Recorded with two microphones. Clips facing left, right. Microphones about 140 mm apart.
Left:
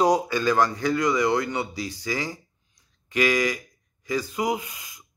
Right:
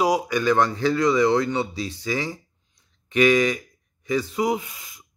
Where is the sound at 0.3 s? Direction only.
20° right (ahead or behind).